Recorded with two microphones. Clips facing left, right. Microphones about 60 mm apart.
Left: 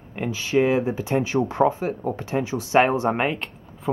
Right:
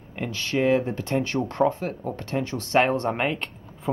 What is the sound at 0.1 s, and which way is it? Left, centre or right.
Speech, centre.